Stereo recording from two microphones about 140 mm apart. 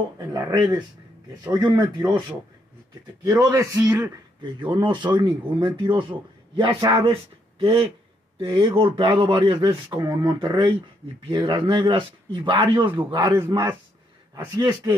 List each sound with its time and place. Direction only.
0.3 s speech: 30° right (ahead or behind)
3.3 s speech: 25° right (ahead or behind)
10.0 s speech: 25° right (ahead or behind)